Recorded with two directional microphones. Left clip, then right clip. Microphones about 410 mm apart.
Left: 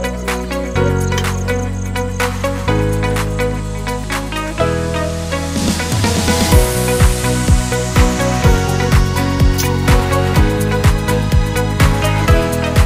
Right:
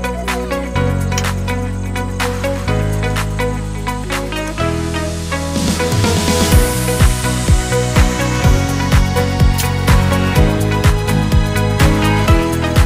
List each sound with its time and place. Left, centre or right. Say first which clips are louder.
5.6 s music: right 3 dB; centre
11.2 s music: right 1 dB; centre